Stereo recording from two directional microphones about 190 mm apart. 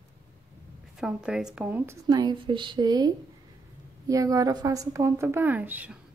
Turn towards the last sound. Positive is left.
turn(degrees=-10)  # may be behind; listen again after turning